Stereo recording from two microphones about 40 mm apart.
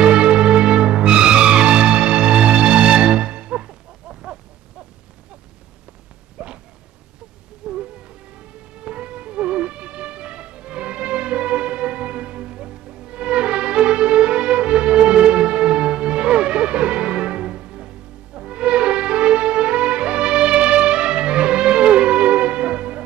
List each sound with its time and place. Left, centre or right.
0.0 s music: right
6.3 s a sound: right
7.6 s music: right